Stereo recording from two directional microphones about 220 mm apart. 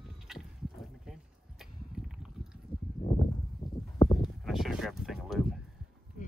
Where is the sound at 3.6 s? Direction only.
25° left (ahead or behind).